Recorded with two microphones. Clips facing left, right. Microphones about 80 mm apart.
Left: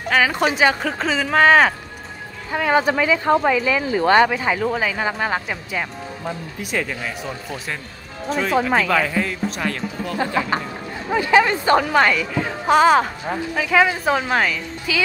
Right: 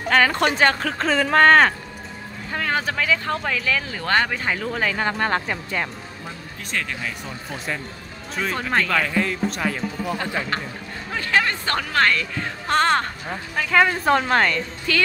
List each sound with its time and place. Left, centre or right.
0.1 s speech: centre
10.1 s speech: centre